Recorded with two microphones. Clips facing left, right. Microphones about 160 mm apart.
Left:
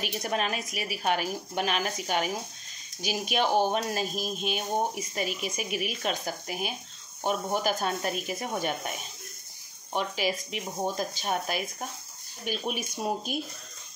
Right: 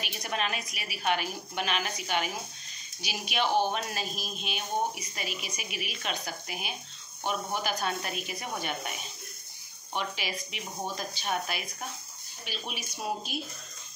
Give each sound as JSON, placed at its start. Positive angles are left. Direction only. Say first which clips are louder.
{"t": 0.0, "sound": "a woman's voice", "louder": "left 4 dB", "side_deg": 40}
{"t": 9.9, "sound": "a woman's voice", "louder": "left 5 dB", "side_deg": 40}